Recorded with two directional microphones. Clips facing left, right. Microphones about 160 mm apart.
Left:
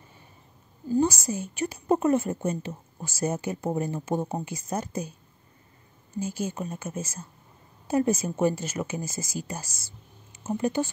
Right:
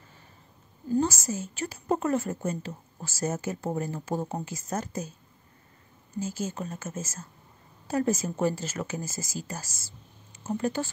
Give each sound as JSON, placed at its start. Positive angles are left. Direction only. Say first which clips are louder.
{"t": 0.9, "sound": "a woman's voice", "louder": "left 2 dB", "side_deg": 10}
{"t": 6.1, "sound": "a woman's voice", "louder": "left 2 dB", "side_deg": 15}